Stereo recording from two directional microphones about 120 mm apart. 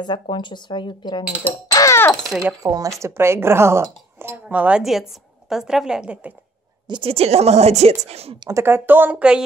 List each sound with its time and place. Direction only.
0.0 s speech: 40° left (ahead or behind)
1.2 s speech: 10° right (ahead or behind)
1.5 s music: 30° left (ahead or behind)
2.6 s a woman's voice: 30° right (ahead or behind); by 6.3 s 10° right (ahead or behind)
6.9 s speech: 50° right (ahead or behind)
8.4 s speech: 25° right (ahead or behind)